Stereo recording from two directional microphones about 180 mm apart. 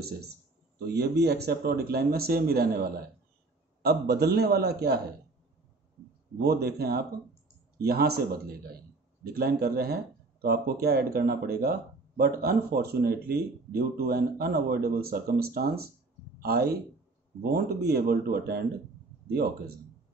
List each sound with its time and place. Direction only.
0.7 s speech: 65° right (ahead or behind)
6.4 s speech: 60° right (ahead or behind)